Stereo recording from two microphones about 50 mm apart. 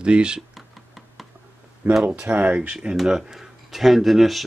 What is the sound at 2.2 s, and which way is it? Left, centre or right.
Speech, right.